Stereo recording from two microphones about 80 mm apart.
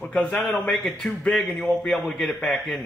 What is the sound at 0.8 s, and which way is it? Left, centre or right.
Speech, centre.